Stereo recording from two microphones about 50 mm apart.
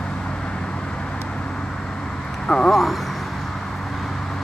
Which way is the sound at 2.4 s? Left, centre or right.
Centre.